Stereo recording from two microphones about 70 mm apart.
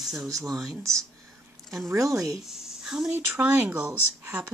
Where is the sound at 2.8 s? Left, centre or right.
Centre.